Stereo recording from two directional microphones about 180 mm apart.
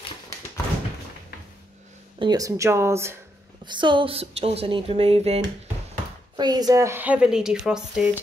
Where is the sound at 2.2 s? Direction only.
20° right (ahead or behind).